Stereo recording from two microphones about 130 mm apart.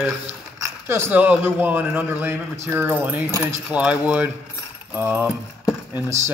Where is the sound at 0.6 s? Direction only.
20° right (ahead or behind).